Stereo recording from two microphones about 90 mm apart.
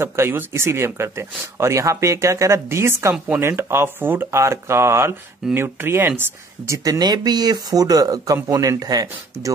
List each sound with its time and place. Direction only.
0.0 s speech: 30° right (ahead or behind)
6.8 s speech: 45° right (ahead or behind)